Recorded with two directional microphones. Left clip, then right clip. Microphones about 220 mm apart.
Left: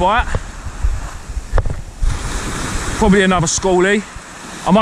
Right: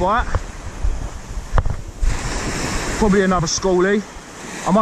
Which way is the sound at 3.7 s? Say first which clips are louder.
Left 3 dB; 35° left (ahead or behind).